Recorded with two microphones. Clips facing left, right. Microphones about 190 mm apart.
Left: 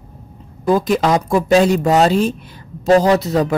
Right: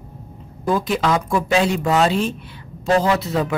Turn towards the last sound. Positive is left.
turn(degrees=40)  # may be behind; listen again after turning